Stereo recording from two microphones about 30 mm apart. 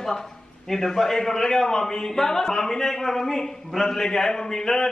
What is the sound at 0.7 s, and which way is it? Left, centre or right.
A man's voice, centre.